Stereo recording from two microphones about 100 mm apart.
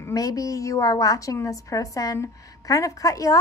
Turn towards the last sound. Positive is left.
turn(degrees=35)  # may be behind; listen again after turning